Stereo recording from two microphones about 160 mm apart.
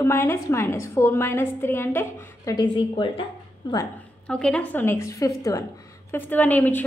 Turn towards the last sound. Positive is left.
turn(degrees=10)  # may be behind; listen again after turning